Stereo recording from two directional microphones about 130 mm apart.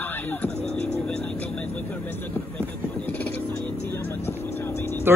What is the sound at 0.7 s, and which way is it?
Vehicle, 10° left (ahead or behind).